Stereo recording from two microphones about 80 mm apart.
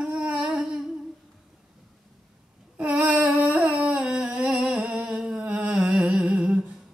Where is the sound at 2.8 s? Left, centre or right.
Centre.